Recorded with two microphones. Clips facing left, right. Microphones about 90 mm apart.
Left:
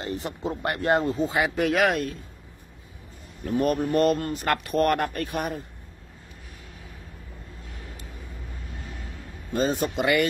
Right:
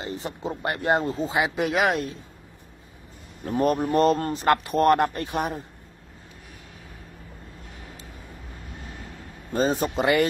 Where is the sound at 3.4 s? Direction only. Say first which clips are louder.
Right 1 dB; 35° right (ahead or behind).